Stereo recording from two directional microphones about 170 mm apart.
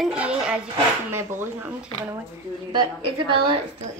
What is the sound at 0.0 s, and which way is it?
A woman's voice, 5° right (ahead or behind).